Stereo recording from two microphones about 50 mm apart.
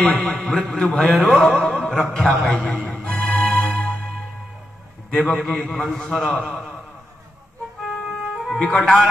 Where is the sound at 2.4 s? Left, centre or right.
Centre.